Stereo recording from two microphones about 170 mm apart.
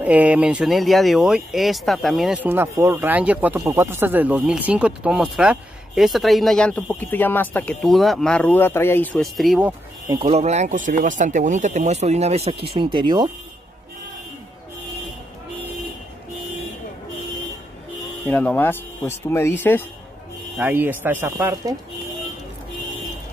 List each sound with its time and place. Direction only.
0.0 s speech: 10° right (ahead or behind)
10.0 s speech: 30° right (ahead or behind)
12.7 s speech: 25° right (ahead or behind)
18.3 s speech: 10° left (ahead or behind)
20.5 s speech: 10° right (ahead or behind)